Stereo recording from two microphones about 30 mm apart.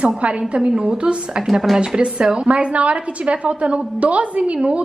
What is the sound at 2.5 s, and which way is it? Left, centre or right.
A woman's voice, right.